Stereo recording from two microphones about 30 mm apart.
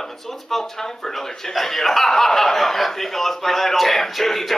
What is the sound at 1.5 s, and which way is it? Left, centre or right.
A man's voice, centre.